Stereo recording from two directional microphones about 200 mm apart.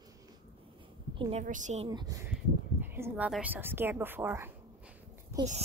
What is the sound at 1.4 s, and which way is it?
Speech, 40° right (ahead or behind).